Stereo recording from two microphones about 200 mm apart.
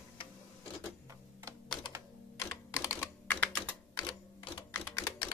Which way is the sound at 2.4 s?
15° left (ahead or behind).